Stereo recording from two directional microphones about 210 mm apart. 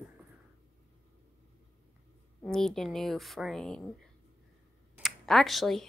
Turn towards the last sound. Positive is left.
turn(degrees=0)  # may be behind; listen again after turning